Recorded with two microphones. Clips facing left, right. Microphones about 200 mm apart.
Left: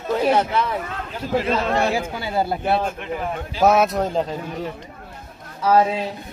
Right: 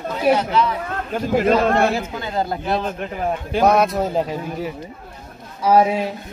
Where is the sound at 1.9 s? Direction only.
10° left (ahead or behind).